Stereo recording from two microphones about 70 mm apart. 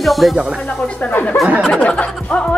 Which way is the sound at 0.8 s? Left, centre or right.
Left.